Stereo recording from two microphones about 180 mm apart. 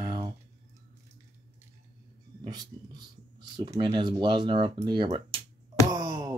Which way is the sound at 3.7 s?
25° right (ahead or behind).